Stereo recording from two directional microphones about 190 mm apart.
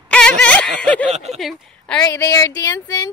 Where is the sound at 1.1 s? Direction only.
35° right (ahead or behind).